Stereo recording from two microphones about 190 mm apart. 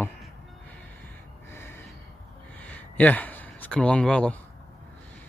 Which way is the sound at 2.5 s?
10° left (ahead or behind).